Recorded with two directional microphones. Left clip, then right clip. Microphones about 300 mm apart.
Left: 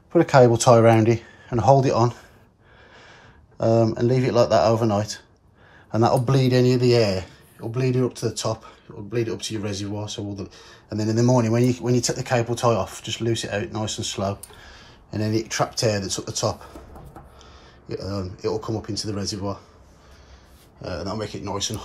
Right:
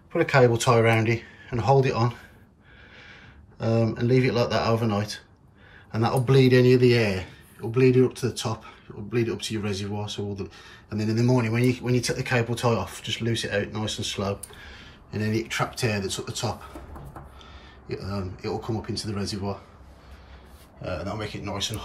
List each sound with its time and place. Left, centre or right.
0.4 s speech: centre
3.5 s speech: centre
17.8 s speech: centre
20.8 s speech: centre